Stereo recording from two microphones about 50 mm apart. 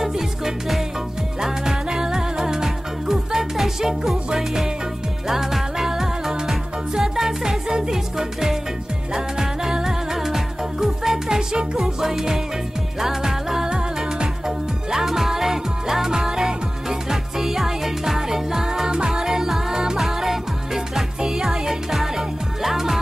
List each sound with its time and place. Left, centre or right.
1.4 s music: centre